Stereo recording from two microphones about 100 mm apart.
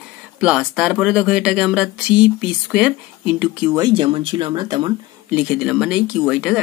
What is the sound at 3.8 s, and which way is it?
Speech, 50° right (ahead or behind).